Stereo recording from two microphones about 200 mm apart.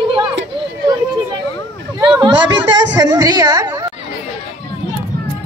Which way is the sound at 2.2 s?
20° right (ahead or behind).